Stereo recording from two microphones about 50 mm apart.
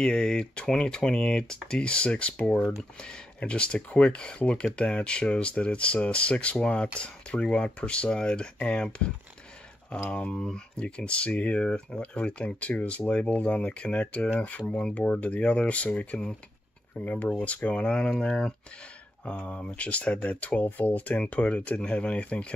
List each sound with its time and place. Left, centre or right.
0.0 s speech: centre; by 21.2 s left
21.2 s speech: left